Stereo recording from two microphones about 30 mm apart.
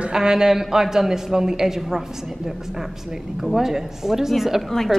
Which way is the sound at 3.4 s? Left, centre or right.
Centre.